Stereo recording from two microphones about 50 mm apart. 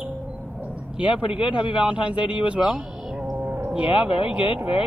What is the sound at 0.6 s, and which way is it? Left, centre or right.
A man's voice, right.